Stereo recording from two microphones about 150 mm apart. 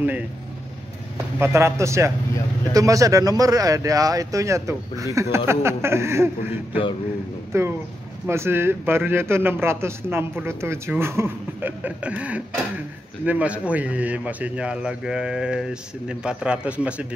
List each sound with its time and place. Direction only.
1.4 s a man's voice: 15° right (ahead or behind)